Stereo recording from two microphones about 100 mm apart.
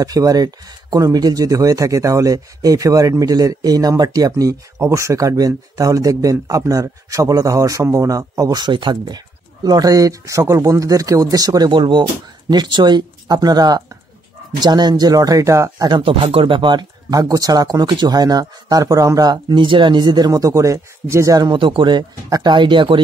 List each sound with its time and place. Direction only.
0.0 s speech: 35° right (ahead or behind)
15.9 s speech: 60° right (ahead or behind)
17.1 s speech: 35° right (ahead or behind)
21.5 s speech: 55° right (ahead or behind)